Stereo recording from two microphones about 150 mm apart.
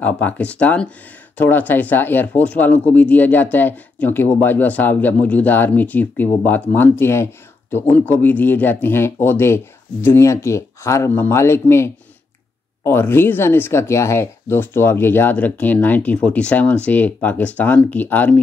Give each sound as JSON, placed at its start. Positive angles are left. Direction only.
{"t": 0.0, "sound": "speech", "side_deg": 10}